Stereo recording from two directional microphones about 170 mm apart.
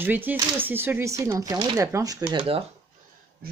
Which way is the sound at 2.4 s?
35° right (ahead or behind).